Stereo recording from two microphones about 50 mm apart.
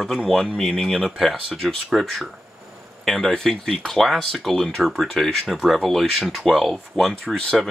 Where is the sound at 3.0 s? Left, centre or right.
Centre.